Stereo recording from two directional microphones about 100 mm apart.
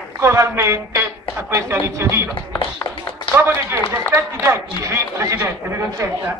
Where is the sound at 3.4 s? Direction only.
25° right (ahead or behind).